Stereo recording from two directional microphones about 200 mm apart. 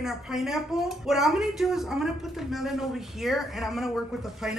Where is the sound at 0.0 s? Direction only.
Centre (ahead or behind).